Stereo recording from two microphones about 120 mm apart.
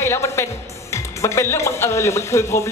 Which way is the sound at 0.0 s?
20° left (ahead or behind).